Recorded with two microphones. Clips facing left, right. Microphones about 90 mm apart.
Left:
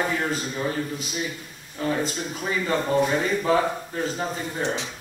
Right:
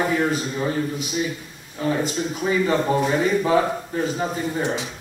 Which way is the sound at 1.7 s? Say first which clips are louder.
Right 3 dB; 5° right (ahead or behind).